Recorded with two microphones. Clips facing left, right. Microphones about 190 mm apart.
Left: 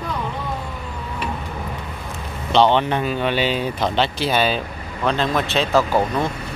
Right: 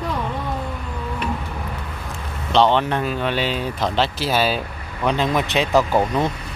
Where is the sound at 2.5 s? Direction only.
Centre (ahead or behind).